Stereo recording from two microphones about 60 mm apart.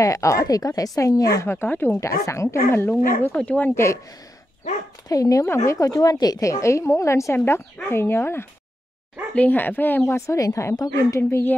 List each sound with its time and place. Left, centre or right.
0.0 s a woman's voice: left
1.5 s speech: left
2.0 s a woman's voice: left
2.9 s speech: left
3.7 s a woman's voice: left
5.0 s a woman's voice: left
5.4 s a woman's voice: left
5.8 s a woman's voice: left
7.4 s speech: left
9.3 s speech: left
10.2 s a woman's voice: left
11.1 s speech: left